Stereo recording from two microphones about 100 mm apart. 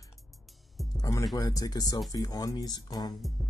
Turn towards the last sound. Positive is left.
turn(degrees=40)  # may be behind; listen again after turning